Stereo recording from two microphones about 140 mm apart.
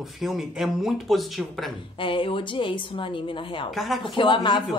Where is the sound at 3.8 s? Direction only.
Centre (ahead or behind).